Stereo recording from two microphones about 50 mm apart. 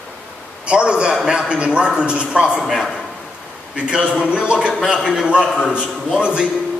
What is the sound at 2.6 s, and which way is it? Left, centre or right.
Speech, centre.